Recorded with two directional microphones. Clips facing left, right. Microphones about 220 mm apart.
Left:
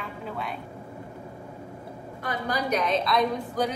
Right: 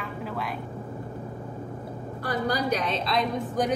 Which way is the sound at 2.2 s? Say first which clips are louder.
Right 2 dB; 35° right (ahead or behind).